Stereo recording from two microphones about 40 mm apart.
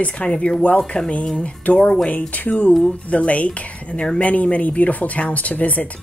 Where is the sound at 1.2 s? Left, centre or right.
Centre.